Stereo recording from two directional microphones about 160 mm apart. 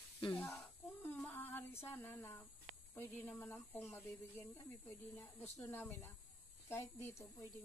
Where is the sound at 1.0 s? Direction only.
10° left (ahead or behind).